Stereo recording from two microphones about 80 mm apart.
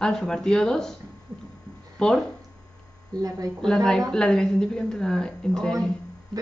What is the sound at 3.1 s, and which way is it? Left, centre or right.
Speech, right.